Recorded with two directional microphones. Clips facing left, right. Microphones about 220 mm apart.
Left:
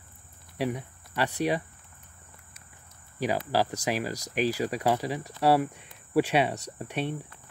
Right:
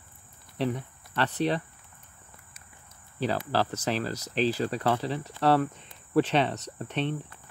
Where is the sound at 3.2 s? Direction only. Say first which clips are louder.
Left 1 dB; 10° left (ahead or behind).